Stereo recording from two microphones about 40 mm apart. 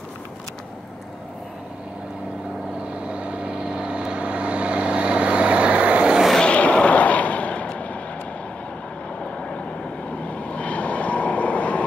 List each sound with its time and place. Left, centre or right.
3.0 s vehicle: right
6.4 s vehicle: left
9.2 s vehicle: left